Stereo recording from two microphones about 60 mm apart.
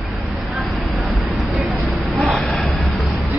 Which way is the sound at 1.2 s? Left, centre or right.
Centre.